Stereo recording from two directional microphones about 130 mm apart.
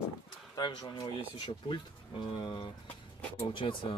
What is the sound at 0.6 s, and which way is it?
Speech, 35° left (ahead or behind).